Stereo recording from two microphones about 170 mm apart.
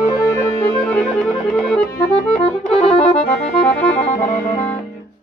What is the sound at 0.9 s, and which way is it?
Music, 5° left (ahead or behind).